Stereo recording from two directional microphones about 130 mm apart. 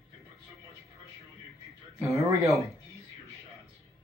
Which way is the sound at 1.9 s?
25° right (ahead or behind).